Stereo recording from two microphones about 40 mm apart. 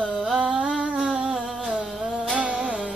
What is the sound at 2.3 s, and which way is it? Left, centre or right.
Music, right.